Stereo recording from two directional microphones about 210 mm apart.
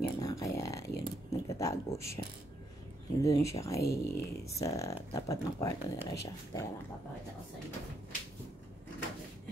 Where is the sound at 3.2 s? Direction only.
15° left (ahead or behind).